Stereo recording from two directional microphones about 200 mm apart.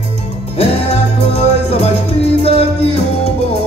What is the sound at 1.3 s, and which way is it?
Music, 30° left (ahead or behind).